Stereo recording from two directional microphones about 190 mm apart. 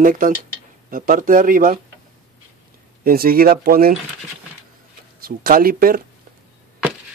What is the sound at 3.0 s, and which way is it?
Speech, 50° right (ahead or behind).